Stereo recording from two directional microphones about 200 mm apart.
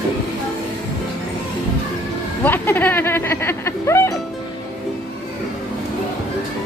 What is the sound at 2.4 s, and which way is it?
Speech, 10° left (ahead or behind).